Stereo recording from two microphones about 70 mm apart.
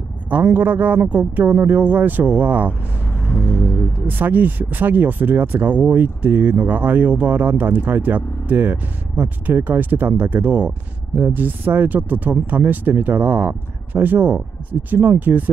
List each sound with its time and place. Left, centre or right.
0.3 s speech: right
3.1 s music: centre
4.1 s speech: right